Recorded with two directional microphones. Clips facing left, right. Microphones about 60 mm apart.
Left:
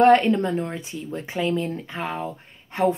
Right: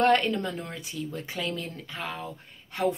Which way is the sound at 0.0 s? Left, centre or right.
Left.